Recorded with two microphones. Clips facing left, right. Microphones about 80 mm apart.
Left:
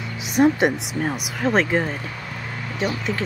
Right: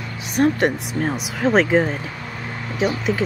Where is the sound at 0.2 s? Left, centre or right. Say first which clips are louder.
Left 1 dB; centre.